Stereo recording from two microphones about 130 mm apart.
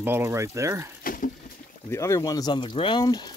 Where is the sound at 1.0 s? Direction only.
90° left.